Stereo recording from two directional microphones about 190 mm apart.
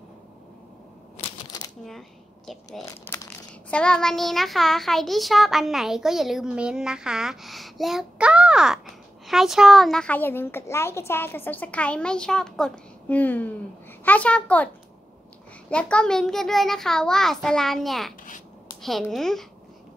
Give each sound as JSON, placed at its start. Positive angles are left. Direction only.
{"t": 1.2, "sound": "shuffling cards", "side_deg": 35}
{"t": 1.9, "sound": "speech", "side_deg": 0}
{"t": 2.8, "sound": "a child's voice", "side_deg": 15}
{"t": 3.7, "sound": "a child's voice", "side_deg": 5}
{"t": 15.7, "sound": "a child's voice", "side_deg": 5}